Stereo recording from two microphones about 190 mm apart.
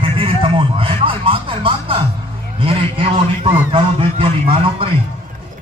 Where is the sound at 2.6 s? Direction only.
30° right (ahead or behind).